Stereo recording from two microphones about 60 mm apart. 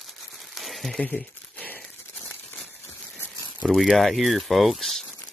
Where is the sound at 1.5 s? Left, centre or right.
Left.